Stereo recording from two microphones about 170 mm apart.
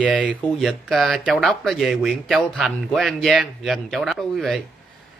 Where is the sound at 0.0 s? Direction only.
10° right (ahead or behind).